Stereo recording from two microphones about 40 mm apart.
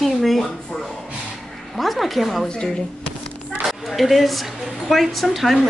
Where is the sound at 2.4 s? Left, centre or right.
Left.